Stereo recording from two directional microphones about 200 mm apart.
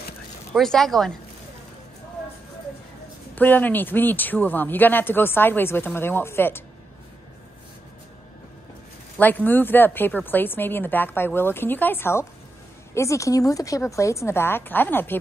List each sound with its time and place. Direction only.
0.5 s speech: centre (ahead or behind)
3.3 s speech: 10° left (ahead or behind)
9.2 s speech: 10° left (ahead or behind)